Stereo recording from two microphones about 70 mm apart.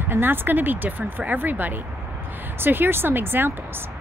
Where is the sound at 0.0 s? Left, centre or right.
Right.